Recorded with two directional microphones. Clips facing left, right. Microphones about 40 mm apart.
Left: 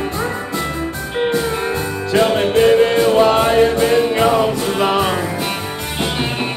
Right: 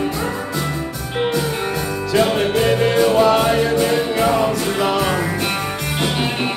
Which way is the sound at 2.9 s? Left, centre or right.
Left.